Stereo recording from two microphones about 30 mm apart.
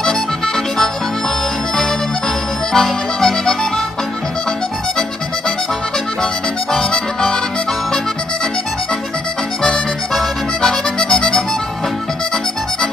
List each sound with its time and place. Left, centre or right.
2.7 s accordion: centre
6.9 s music: left
10.6 s music: centre